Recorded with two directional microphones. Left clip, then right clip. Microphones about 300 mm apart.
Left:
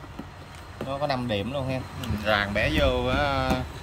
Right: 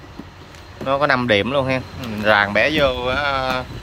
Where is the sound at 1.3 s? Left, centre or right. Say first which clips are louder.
Right 12 dB; centre.